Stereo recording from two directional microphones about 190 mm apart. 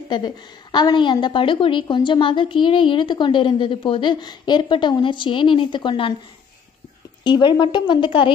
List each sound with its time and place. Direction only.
0.1 s a woman's voice: 25° left (ahead or behind)
7.2 s a woman's voice: 25° left (ahead or behind)